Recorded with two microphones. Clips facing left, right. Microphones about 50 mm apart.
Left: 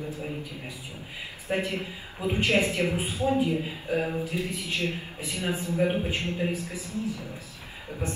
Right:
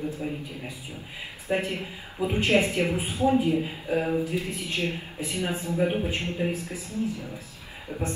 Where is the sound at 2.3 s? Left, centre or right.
Right.